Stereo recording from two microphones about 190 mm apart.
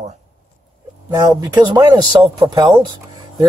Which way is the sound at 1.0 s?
20° right (ahead or behind).